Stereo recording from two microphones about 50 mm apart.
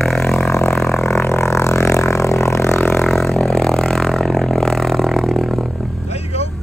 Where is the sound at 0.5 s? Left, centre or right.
Left.